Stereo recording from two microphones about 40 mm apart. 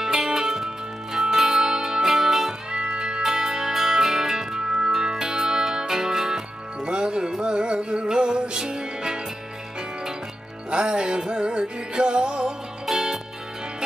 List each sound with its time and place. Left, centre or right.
0.0 s music: centre
2.7 s music: right
10.7 s music: right
12.8 s music: centre